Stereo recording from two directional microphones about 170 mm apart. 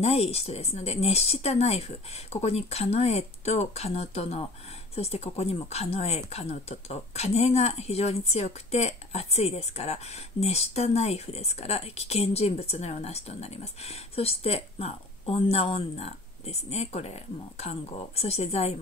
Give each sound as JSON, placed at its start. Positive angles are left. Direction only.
{"t": 0.0, "sound": "speech", "side_deg": 35}